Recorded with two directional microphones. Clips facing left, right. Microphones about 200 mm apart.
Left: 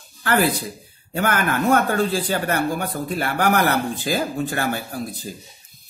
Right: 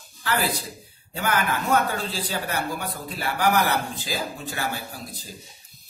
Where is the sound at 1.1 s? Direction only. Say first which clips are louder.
Left 4 dB; 55° left (ahead or behind).